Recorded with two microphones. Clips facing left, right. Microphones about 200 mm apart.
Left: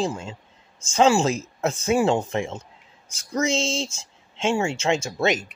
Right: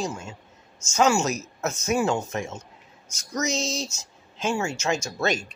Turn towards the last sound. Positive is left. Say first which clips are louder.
# left 3 dB
turn(degrees=20)  # may be behind; listen again after turning